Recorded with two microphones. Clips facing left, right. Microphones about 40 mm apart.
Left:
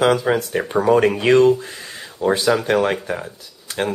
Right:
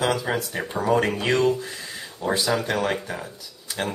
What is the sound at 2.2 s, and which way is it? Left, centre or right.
Speech, left.